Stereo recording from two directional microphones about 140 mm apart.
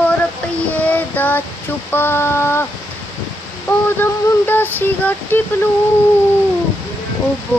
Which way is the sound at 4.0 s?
15° left (ahead or behind).